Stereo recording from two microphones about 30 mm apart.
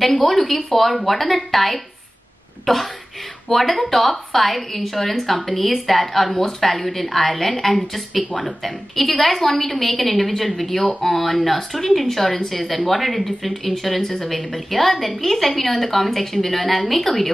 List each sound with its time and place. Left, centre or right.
0.0 s a woman's voice: centre
8.3 s speech: left
8.6 s a woman's voice: centre